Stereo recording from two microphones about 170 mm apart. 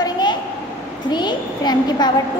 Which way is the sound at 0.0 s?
25° left (ahead or behind).